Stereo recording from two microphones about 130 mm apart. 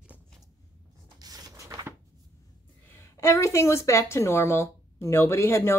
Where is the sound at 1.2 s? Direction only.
30° right (ahead or behind).